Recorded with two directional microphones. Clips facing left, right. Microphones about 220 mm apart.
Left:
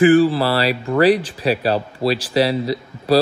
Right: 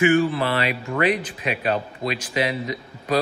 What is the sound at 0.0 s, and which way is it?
A man's voice, 30° left (ahead or behind).